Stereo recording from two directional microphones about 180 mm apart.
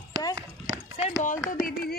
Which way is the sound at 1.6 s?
55° left (ahead or behind).